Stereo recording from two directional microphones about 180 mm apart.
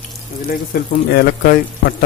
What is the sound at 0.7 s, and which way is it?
Speech, 60° left (ahead or behind).